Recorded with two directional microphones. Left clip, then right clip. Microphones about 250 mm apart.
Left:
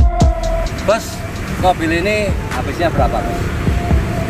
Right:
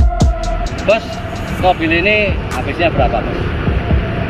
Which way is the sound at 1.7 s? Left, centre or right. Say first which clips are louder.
Right 3 dB; left.